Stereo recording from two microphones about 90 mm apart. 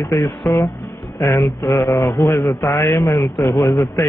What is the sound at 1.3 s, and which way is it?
A man's voice, 35° left (ahead or behind).